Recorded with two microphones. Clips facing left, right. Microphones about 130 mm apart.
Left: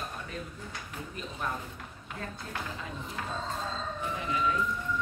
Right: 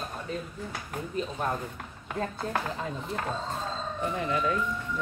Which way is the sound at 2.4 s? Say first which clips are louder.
Right 8 dB; 60° right (ahead or behind).